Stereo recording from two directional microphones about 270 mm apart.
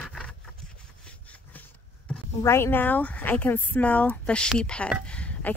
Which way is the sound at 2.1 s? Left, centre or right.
Centre.